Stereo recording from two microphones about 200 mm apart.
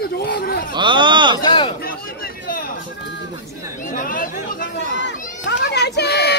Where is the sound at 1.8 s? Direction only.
45° left (ahead or behind).